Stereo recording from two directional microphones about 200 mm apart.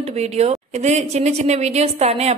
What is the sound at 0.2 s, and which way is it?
A woman's voice, 35° right (ahead or behind).